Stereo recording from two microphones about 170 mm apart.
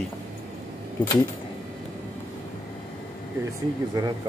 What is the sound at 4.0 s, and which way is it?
Speech, 20° right (ahead or behind).